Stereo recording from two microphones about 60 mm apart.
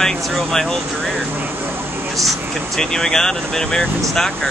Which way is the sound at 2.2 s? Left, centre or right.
Centre.